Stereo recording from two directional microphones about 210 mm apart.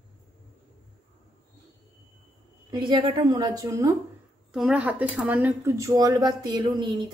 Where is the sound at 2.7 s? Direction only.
20° right (ahead or behind).